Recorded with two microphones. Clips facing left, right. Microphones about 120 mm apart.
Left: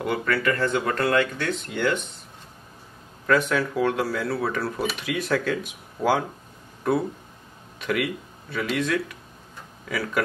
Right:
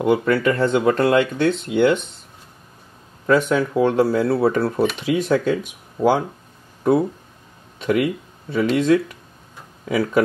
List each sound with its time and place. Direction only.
0.0 s speech: 25° right (ahead or behind)
3.3 s speech: 20° right (ahead or behind)
7.8 s speech: 25° right (ahead or behind)